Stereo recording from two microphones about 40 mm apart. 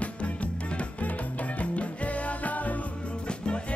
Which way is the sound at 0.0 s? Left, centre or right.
Left.